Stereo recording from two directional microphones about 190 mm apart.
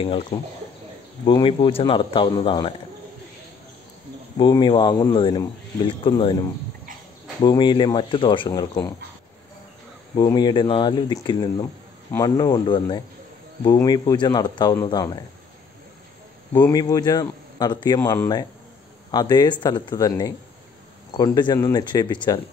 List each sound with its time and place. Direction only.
0.0 s a man's voice: 25° left (ahead or behind)
4.4 s a man's voice: 25° left (ahead or behind)
7.4 s a man's voice: 25° left (ahead or behind)
10.1 s a man's voice: 20° left (ahead or behind)
16.6 s a man's voice: 20° left (ahead or behind)